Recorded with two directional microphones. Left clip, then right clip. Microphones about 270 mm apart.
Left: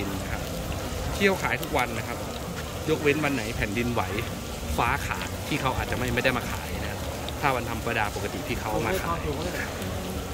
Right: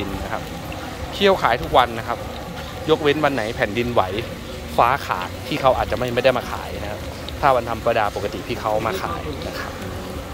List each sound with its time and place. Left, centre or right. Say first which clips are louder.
1.2 s speech: right 8 dB; centre
2.9 s speech: right 7 dB; centre
7.4 s speech: right 10 dB; centre